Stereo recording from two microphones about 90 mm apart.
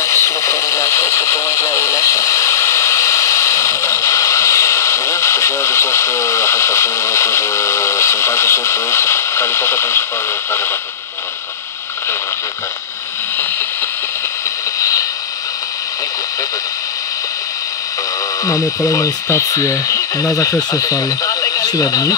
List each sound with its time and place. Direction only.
0.0 s radio: 30° left (ahead or behind)
14.8 s a sound: 35° left (ahead or behind)
18.4 s speech: 40° left (ahead or behind)